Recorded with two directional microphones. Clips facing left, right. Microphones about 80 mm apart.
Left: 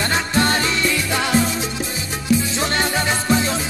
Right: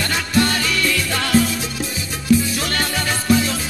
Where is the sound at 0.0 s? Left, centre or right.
Left.